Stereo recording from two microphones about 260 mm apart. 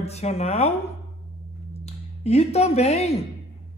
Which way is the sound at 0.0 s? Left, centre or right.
Left.